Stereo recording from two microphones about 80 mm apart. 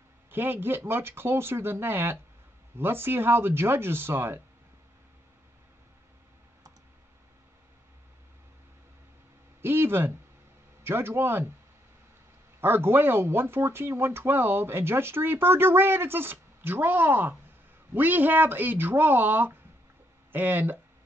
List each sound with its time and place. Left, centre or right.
0.3 s speech: right
9.6 s a sound: right
10.8 s speech: right
12.5 s speech: right